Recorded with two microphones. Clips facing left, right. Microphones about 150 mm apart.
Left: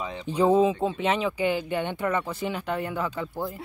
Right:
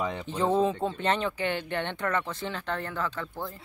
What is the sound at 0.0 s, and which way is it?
Speech, 55° right (ahead or behind).